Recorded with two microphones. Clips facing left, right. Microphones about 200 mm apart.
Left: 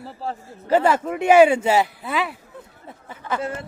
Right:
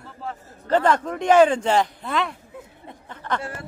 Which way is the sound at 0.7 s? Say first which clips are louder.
Left 1 dB; 10° left (ahead or behind).